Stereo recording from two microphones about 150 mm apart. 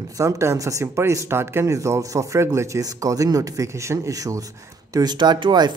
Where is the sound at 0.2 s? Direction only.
20° right (ahead or behind).